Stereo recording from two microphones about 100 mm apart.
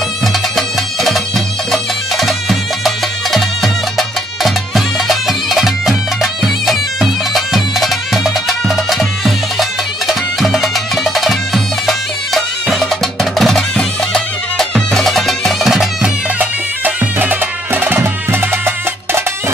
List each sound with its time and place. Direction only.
0.2 s music: centre (ahead or behind)
1.7 s bagpipes: centre (ahead or behind)
2.8 s music: centre (ahead or behind)
6.4 s bagpipes: centre (ahead or behind)
16.3 s music: 15° right (ahead or behind)